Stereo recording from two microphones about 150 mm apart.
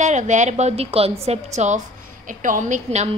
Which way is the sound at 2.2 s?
60° right (ahead or behind).